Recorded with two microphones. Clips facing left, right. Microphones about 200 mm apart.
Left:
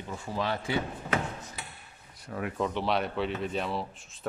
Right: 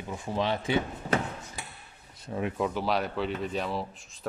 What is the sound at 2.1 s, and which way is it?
Speech, 25° right (ahead or behind).